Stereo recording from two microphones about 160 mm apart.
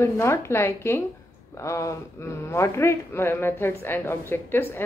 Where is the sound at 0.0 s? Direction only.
15° left (ahead or behind).